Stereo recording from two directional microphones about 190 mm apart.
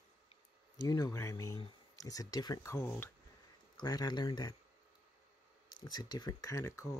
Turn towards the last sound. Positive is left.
turn(degrees=15)  # may be behind; listen again after turning